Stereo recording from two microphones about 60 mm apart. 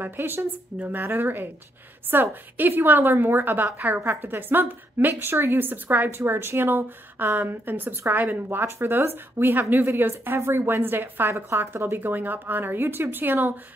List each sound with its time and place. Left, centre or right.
0.0 s a woman's voice: right